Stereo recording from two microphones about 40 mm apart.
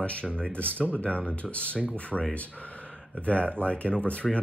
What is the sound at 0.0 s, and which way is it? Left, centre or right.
Speech, left.